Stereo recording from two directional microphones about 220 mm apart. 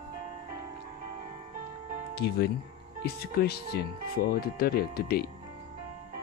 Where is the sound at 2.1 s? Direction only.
50° left (ahead or behind).